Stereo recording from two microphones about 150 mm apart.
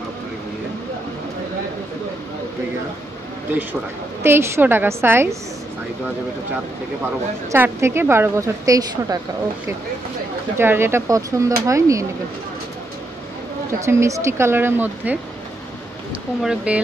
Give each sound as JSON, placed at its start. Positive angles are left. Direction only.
{"t": 4.2, "sound": "a woman's voice", "side_deg": -15}
{"t": 7.5, "sound": "a woman's voice", "side_deg": -15}
{"t": 10.6, "sound": "speech", "side_deg": -15}
{"t": 13.7, "sound": "a woman's voice", "side_deg": -20}
{"t": 16.4, "sound": "a woman's voice", "side_deg": -10}